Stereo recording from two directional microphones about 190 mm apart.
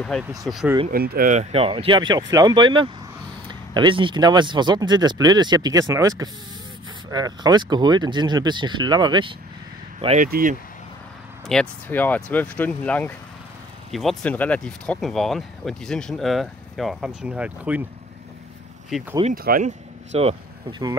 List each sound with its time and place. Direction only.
0.0 s speech: centre (ahead or behind)
0.8 s speech: 50° right (ahead or behind); by 9.3 s 25° right (ahead or behind)
9.9 s speech: 35° right (ahead or behind)
10.2 s speech: 50° right (ahead or behind)
11.4 s speech: 5° left (ahead or behind)
18.9 s speech: 5° right (ahead or behind)
19.3 s speech: 50° right (ahead or behind)
20.1 s speech: 30° right (ahead or behind)